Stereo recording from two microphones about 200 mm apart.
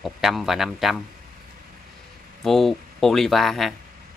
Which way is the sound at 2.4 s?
Centre (ahead or behind).